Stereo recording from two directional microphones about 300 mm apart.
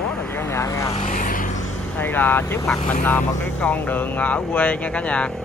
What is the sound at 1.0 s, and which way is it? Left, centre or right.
Vehicle, left.